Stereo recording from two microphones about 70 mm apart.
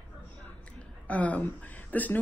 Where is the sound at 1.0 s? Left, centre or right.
Left.